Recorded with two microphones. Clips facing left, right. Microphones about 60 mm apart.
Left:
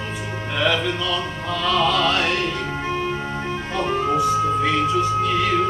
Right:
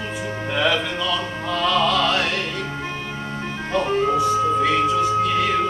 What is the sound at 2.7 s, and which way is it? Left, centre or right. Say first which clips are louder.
Vehicle: left 5 dB; centre.